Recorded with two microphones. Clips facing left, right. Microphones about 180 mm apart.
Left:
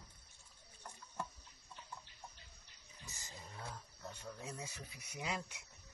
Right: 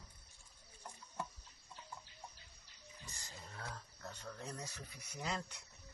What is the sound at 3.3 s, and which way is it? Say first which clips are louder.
Wild animals: even; 15° left (ahead or behind).